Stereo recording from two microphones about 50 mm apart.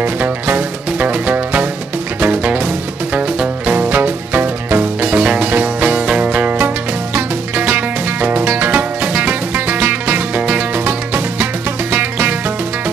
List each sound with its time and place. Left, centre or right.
0.0 s music: right
4.0 s music: right
5.1 s music: right
7.5 s music: right
10.3 s music: right
10.9 s music: right